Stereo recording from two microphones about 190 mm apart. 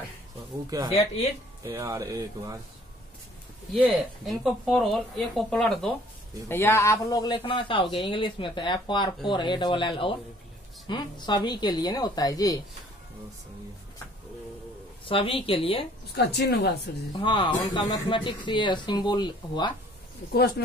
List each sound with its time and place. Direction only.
0.7 s speech: 20° right (ahead or behind)
0.9 s speech: 35° left (ahead or behind)
1.6 s speech: 15° right (ahead or behind)
3.8 s a woman's voice: centre (ahead or behind); by 12.5 s 20° left (ahead or behind)
15.0 s a man's voice: 30° left (ahead or behind)
16.2 s speech: 60° left (ahead or behind)
17.2 s a man's voice: 25° left (ahead or behind)
20.3 s speech: 55° left (ahead or behind)